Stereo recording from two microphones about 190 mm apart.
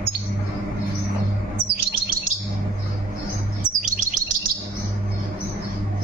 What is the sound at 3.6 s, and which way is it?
Chirp, 40° right (ahead or behind).